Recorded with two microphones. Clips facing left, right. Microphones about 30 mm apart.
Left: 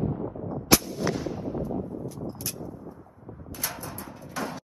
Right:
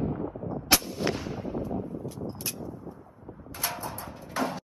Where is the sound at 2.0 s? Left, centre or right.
Right.